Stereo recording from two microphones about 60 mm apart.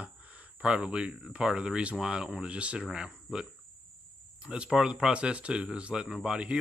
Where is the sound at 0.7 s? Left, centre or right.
Centre.